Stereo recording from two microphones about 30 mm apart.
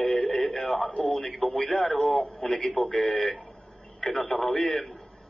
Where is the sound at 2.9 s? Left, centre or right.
Left.